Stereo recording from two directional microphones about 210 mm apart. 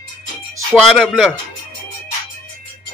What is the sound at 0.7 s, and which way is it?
Music, centre (ahead or behind).